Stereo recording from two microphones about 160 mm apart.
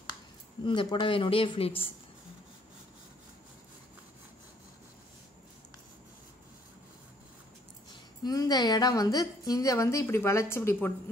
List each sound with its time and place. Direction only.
0.7 s speech: 30° left (ahead or behind)
8.2 s a woman's voice: 25° left (ahead or behind)